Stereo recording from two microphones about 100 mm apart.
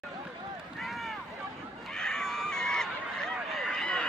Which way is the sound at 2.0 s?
5° left (ahead or behind).